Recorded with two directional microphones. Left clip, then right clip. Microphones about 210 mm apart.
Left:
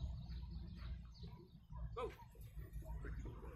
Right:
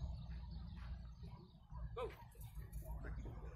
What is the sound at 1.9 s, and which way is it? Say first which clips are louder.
Dog: even; 5° right (ahead or behind).